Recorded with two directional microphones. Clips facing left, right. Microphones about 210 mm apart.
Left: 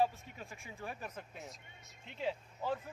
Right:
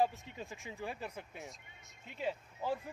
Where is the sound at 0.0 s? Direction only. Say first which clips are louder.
Even; 15° right (ahead or behind).